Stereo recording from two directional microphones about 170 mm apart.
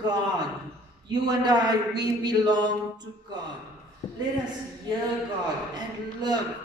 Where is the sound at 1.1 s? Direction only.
25° right (ahead or behind).